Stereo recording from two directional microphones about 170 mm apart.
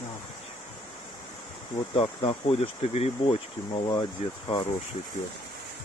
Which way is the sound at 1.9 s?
35° left (ahead or behind).